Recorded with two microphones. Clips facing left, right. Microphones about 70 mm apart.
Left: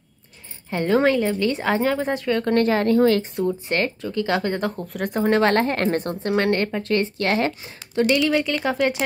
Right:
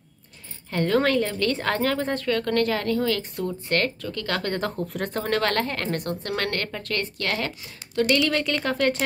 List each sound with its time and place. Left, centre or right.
0.7 s a woman's voice: centre; by 3.3 s left
3.6 s a woman's voice: centre
4.6 s speech: centre
5.2 s a woman's voice: left
8.3 s a woman's voice: centre